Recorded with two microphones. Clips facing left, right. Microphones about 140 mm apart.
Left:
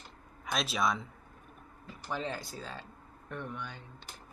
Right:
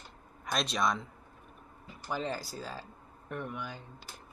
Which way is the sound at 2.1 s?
Centre (ahead or behind).